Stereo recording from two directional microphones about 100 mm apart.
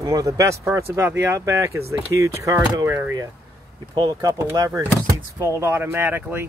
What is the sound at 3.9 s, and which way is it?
Speech, 50° right (ahead or behind).